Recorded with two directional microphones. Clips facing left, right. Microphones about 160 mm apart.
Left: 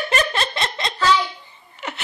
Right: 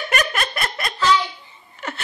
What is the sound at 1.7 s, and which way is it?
Laughter, 15° left (ahead or behind).